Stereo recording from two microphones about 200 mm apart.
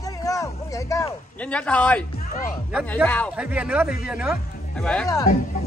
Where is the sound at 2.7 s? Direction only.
5° right (ahead or behind).